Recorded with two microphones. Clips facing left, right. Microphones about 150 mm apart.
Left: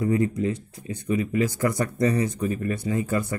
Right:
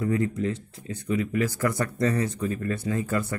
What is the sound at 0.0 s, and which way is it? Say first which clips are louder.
Speech: left 2 dB; 10° left (ahead or behind).